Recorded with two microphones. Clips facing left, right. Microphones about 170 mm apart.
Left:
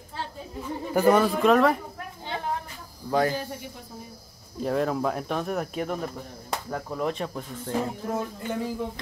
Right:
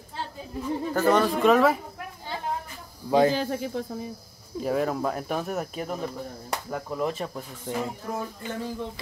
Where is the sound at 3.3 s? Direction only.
90° right.